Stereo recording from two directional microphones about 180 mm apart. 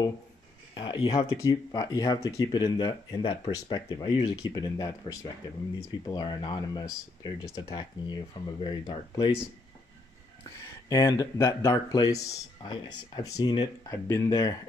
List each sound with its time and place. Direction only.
0.7 s speech: 25° left (ahead or behind)
10.5 s speech: 15° left (ahead or behind)